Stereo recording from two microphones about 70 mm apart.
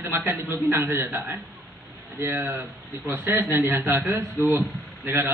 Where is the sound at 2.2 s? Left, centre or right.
Right.